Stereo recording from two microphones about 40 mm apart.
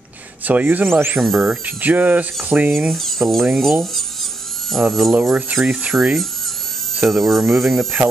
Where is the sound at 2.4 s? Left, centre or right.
Right.